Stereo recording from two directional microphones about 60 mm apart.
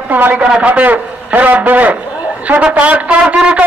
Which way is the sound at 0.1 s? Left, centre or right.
Right.